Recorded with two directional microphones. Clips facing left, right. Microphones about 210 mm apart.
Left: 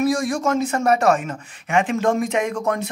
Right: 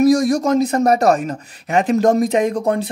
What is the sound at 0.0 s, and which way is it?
Speech, 40° right (ahead or behind).